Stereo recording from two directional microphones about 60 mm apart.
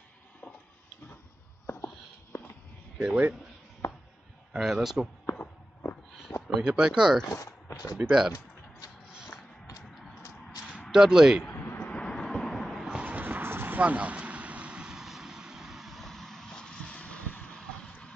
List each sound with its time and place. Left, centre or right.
2.3 s a sound: left
3.0 s speech: right
4.5 s a man's voice: centre
5.4 s walk: left
6.4 s speech: centre
7.7 s speech: left
8.0 s a man's voice: centre
10.9 s a man's voice: centre
11.6 s a sound: left
11.9 s vehicle: centre
12.9 s a sound: right; by 17.6 s left